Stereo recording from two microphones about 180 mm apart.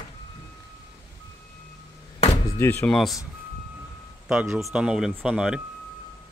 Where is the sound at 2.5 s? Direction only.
10° left (ahead or behind).